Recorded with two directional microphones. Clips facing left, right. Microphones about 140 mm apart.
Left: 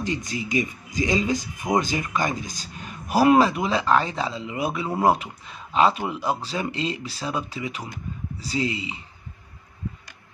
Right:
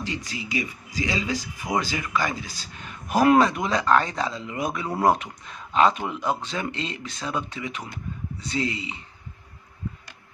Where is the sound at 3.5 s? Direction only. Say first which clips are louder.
Even; 5° left (ahead or behind).